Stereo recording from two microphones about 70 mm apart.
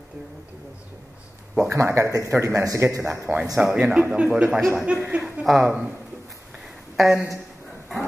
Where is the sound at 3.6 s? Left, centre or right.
Centre.